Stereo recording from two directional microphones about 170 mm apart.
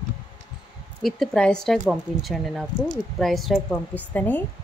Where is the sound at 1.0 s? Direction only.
Centre (ahead or behind).